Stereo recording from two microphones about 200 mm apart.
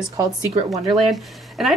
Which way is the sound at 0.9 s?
Centre (ahead or behind).